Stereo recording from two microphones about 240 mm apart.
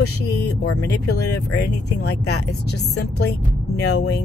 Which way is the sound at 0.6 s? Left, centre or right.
Left.